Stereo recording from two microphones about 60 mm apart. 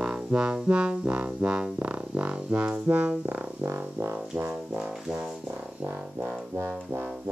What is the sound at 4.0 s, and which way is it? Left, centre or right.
Music, right.